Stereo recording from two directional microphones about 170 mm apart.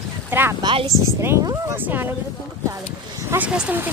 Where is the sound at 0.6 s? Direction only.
30° right (ahead or behind).